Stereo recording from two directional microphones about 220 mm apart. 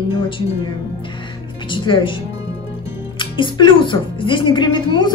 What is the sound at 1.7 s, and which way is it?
Speech, 20° left (ahead or behind).